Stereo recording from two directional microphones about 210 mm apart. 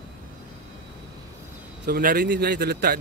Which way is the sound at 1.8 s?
45° right (ahead or behind).